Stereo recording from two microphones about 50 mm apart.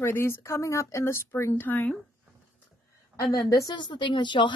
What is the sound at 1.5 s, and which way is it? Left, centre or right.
Speech, left.